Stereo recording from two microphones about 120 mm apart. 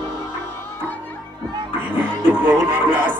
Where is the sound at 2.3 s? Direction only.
15° right (ahead or behind).